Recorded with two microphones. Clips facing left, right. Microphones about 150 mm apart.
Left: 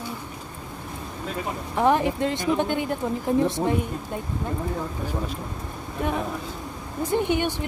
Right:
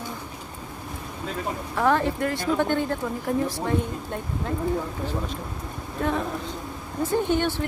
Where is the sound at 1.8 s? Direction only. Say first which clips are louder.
Left 2 dB; 15° left (ahead or behind).